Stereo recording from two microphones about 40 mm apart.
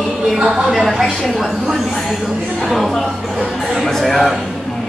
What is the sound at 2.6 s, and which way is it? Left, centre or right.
Speech, centre.